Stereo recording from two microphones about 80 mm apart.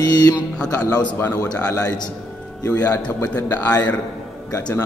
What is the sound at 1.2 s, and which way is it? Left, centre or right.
Speech, left.